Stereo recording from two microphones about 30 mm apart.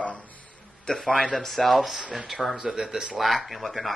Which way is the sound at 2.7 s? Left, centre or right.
Centre.